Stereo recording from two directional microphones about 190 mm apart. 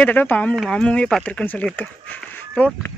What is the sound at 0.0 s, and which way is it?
Speech, 10° left (ahead or behind).